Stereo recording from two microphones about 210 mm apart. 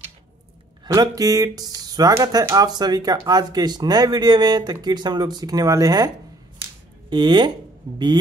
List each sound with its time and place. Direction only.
0.9 s speech: 15° right (ahead or behind)